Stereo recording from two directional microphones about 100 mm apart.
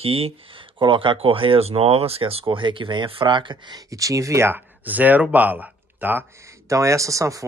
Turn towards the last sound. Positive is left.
turn(degrees=-30)  # may be behind; listen again after turning